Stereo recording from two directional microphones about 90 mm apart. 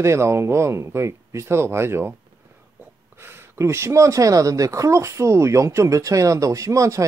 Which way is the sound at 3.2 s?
25° right (ahead or behind).